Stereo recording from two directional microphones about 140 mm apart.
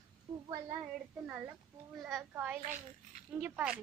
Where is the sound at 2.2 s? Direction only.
10° right (ahead or behind).